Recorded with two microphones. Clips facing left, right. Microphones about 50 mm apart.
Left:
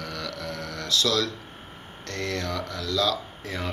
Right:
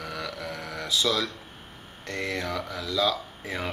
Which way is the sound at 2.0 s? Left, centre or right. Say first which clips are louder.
Even; centre.